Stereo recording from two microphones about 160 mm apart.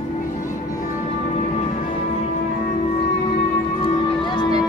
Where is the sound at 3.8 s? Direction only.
30° left (ahead or behind).